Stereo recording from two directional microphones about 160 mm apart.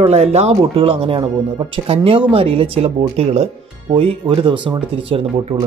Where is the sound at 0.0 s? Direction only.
40° right (ahead or behind).